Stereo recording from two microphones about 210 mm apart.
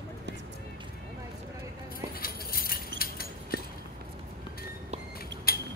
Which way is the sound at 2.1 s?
45° left (ahead or behind).